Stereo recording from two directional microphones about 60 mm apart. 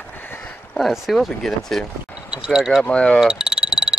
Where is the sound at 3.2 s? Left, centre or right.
Centre.